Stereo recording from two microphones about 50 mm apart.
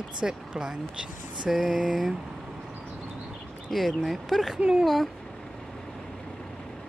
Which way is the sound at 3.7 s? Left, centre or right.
Centre.